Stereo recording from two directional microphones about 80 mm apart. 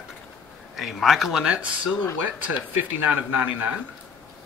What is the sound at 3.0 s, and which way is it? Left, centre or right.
Speech, right.